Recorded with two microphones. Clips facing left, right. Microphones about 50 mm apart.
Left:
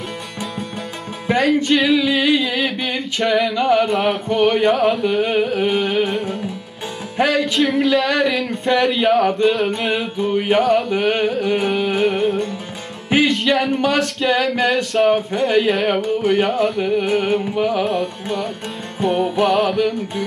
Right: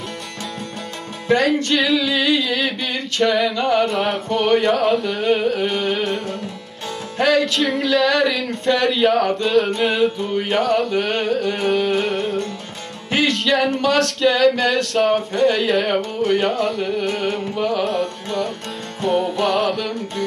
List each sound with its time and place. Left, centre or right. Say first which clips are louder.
1.3 s music: right 1 dB; centre
1.8 s singing: left 2 dB; centre
3.2 s speech: even; centre
9.3 s music: left 1 dB; centre
10.1 s speech: left 3 dB; centre
13.1 s music: left 2 dB; centre
14.7 s speech: left 2 dB; centre